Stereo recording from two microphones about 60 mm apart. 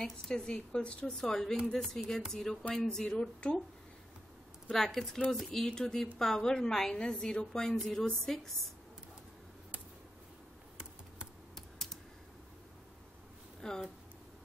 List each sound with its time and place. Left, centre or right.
0.0 s a woman's voice: centre
4.7 s a woman's voice: centre
11.5 s computer keyboard: centre
13.6 s speech: centre